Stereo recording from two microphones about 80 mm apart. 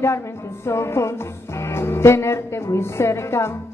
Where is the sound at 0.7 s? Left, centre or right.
Left.